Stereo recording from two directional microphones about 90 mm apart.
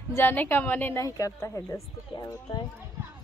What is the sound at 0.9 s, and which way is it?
Speech, 35° left (ahead or behind).